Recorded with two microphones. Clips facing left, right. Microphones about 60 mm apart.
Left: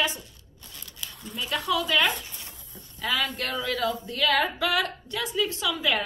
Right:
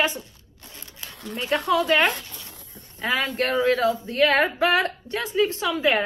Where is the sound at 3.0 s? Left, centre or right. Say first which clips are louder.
Right 4 dB; right.